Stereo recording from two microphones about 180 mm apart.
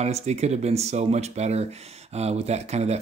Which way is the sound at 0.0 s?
35° right (ahead or behind).